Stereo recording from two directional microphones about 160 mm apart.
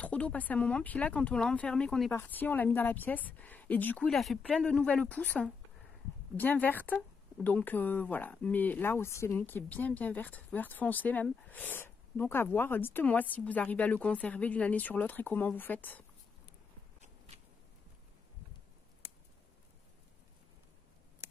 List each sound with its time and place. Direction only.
0.0 s speech: 10° left (ahead or behind)
21.2 s scissors: 20° right (ahead or behind)